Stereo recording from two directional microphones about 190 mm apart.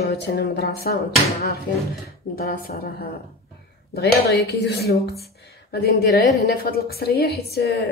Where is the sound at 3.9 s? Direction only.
55° left (ahead or behind).